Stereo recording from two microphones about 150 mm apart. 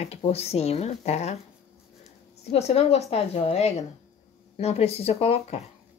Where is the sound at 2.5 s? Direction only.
45° left (ahead or behind).